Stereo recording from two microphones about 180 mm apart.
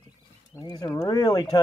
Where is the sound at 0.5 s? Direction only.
20° left (ahead or behind).